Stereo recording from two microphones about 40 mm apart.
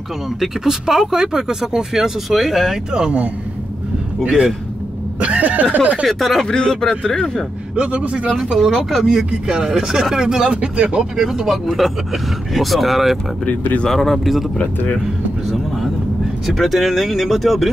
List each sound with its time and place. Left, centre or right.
0.4 s speech: centre
4.2 s speech: right
5.2 s speech: right
6.0 s speech: centre
6.4 s speech: centre
7.7 s speech: right
8.6 s speech: centre
10.1 s speech: centre
11.1 s speech: centre
13.5 s speech: left
13.8 s speech: centre
15.4 s vehicle: centre
16.4 s speech: centre